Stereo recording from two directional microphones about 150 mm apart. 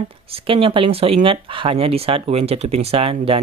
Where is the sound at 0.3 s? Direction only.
35° right (ahead or behind).